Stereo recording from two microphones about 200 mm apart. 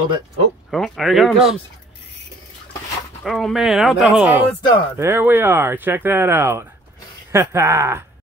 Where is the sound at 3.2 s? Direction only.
Centre (ahead or behind).